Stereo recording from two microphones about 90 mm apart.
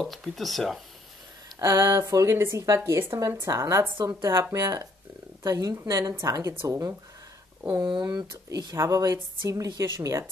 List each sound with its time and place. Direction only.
0.0 s speech: centre (ahead or behind)
1.6 s speech: 30° right (ahead or behind)
3.2 s speech: 40° right (ahead or behind)
4.1 s speech: 30° right (ahead or behind)
8.0 s speech: 40° right (ahead or behind)